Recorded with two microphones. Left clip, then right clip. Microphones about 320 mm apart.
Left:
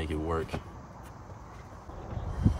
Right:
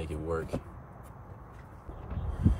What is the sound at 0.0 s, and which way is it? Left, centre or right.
Vehicle, left.